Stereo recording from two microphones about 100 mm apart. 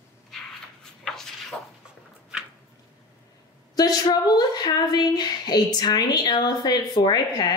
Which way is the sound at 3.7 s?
40° left (ahead or behind).